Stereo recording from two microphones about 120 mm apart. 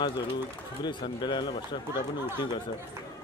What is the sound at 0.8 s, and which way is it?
Speech, 40° left (ahead or behind).